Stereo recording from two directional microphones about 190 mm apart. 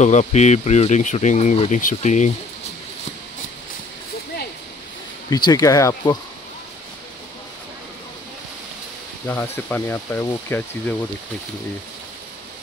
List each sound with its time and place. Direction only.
0.0 s speech: 35° left (ahead or behind)
5.3 s speech: 20° left (ahead or behind)
9.3 s speech: 5° left (ahead or behind)